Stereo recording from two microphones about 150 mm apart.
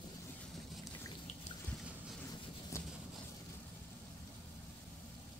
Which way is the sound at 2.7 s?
20° left (ahead or behind).